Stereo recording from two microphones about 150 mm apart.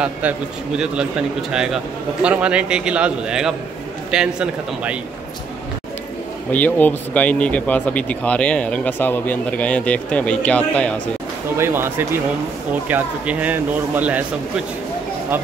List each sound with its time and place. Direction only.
1.5 s a man's voice: 5° right (ahead or behind)
6.5 s speech: 10° left (ahead or behind)
11.5 s speech: 15° right (ahead or behind)